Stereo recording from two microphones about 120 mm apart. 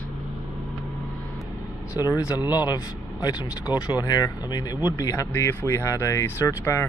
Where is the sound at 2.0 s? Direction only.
30° left (ahead or behind).